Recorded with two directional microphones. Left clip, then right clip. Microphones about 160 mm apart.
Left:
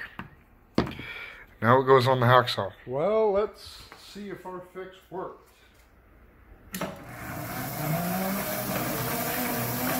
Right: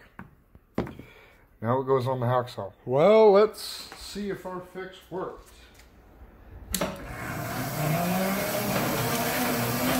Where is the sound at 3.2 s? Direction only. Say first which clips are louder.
Right 7 dB; 90° right.